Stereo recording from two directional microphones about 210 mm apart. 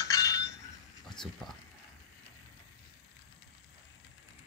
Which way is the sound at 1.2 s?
Centre (ahead or behind).